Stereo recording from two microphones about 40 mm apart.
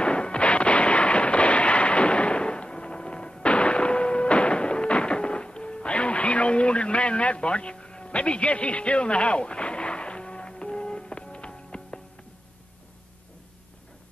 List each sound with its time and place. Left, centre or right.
0.0 s artillery fire: left